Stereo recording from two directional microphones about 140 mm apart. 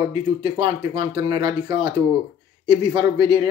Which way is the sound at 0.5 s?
40° right (ahead or behind).